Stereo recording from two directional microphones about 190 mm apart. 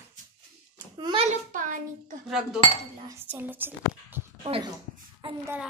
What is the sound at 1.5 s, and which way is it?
Speech, 45° right (ahead or behind).